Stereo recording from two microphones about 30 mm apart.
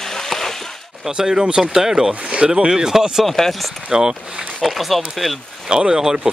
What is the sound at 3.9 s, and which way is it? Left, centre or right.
Speech, right.